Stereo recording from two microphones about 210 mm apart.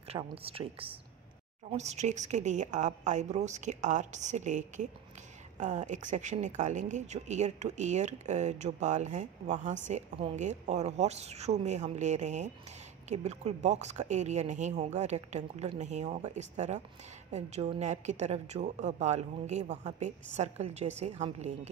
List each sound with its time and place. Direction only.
0.1 s speech: 25° right (ahead or behind)